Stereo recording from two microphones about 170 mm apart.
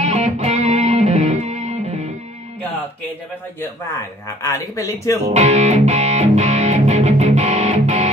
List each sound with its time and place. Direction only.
0.0 s music: 40° right (ahead or behind)
4.4 s speech: 20° left (ahead or behind)
5.3 s music: 40° right (ahead or behind)